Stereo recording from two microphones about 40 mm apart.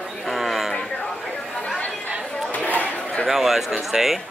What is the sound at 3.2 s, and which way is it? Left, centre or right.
Speech, centre.